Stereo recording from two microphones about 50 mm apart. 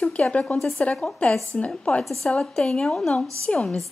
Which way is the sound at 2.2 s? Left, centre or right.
Centre.